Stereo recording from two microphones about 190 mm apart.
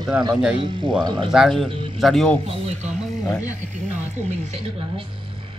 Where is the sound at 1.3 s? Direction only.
Centre (ahead or behind).